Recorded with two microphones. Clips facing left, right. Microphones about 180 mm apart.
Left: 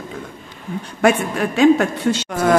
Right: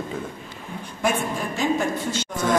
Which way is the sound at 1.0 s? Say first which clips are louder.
Left 8 dB; 70° left (ahead or behind).